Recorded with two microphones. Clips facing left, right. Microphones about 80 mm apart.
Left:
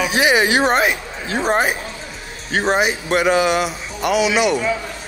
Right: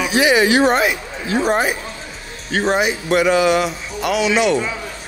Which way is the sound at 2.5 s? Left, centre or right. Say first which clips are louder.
Even; centre.